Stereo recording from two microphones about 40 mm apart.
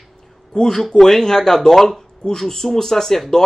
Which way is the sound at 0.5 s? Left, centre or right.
Centre.